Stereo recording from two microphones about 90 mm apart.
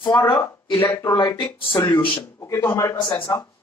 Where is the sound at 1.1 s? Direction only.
60° left (ahead or behind).